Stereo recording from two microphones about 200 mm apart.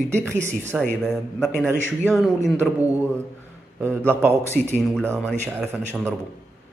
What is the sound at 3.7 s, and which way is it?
Speech, 10° right (ahead or behind).